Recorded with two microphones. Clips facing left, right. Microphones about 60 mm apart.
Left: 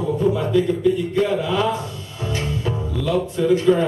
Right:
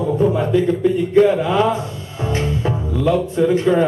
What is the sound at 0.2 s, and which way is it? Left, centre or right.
Speech, right.